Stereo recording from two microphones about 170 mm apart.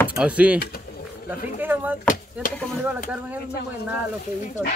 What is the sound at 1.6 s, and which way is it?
Speech, 10° right (ahead or behind).